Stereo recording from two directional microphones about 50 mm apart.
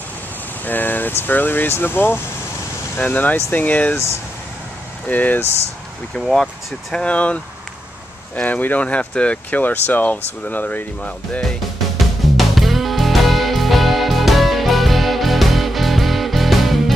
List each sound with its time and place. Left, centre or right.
0.7 s speech: left
3.0 s speech: left
5.0 s speech: left
6.1 s speech: centre
8.4 s speech: left
8.8 s speech: left
9.5 s speech: left
12.4 s music: centre